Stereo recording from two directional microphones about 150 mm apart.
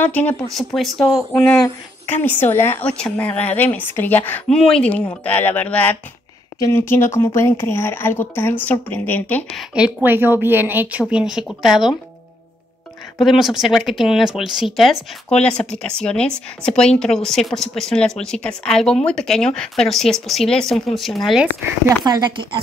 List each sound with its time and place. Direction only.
0.0 s a woman's voice: 10° left (ahead or behind)
0.7 s a woman's voice: centre (ahead or behind)
9.5 s a woman's voice: 5° right (ahead or behind)
13.2 s speech: centre (ahead or behind)
21.8 s speech: 25° right (ahead or behind)